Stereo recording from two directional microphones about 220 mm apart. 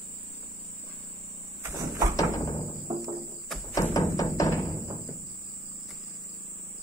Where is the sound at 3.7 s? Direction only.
15° left (ahead or behind).